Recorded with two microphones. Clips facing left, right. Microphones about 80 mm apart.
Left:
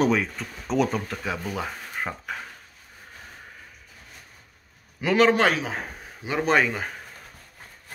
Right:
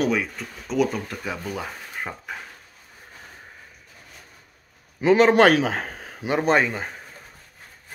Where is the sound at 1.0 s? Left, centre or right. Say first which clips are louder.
Left 1 dB; centre.